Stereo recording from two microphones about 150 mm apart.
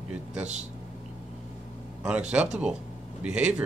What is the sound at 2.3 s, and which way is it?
Speech, 10° right (ahead or behind).